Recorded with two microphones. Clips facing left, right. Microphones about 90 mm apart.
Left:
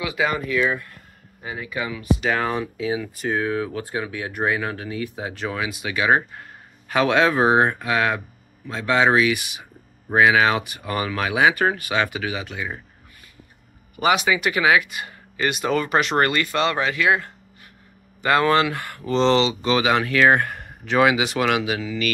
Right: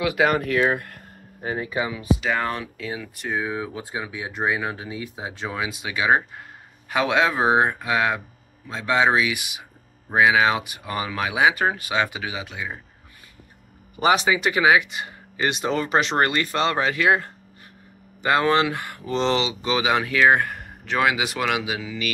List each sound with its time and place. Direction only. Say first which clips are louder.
0.0 s speech: right 3 dB; 55° right (ahead or behind); by 1.8 s 40° right (ahead or behind)
1.8 s speech: left 1 dB; 25° right (ahead or behind)
2.2 s speech: left 2 dB; 5° left (ahead or behind)
3.4 s speech: left 4 dB; 15° right (ahead or behind)
13.9 s speech: even; 30° right (ahead or behind)
18.2 s speech: left 1 dB; 20° right (ahead or behind)